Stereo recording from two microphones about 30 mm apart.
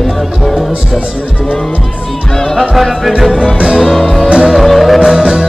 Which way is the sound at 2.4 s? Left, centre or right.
Centre.